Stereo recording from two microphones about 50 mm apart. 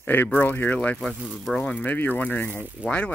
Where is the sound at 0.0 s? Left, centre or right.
Left.